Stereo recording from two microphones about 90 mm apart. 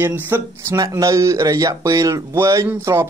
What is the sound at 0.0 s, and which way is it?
Speech, 25° right (ahead or behind).